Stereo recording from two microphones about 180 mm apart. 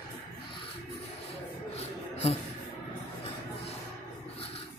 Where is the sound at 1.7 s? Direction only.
35° left (ahead or behind).